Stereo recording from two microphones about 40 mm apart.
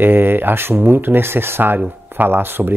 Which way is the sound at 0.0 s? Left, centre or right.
Right.